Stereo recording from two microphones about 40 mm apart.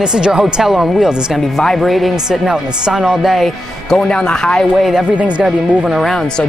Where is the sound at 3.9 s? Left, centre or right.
Centre.